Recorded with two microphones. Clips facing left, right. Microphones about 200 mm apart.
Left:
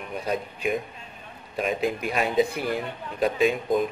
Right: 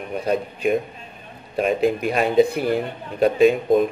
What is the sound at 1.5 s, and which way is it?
Speech, 45° right (ahead or behind).